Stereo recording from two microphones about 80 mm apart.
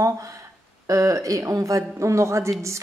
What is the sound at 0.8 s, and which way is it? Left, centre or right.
A woman's voice, right.